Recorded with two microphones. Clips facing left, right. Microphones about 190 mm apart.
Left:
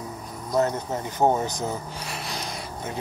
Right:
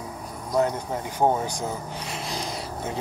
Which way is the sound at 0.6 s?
10° right (ahead or behind).